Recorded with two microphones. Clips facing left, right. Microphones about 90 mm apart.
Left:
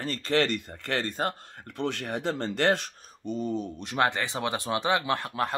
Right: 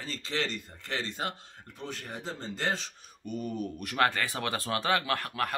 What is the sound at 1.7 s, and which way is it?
Speech, 75° left (ahead or behind).